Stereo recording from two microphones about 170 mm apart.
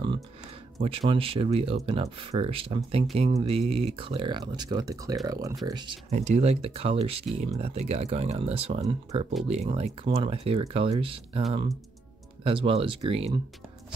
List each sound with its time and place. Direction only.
0.7 s speech: 30° right (ahead or behind)
6.0 s speech: 40° right (ahead or behind)
12.4 s speech: 35° right (ahead or behind)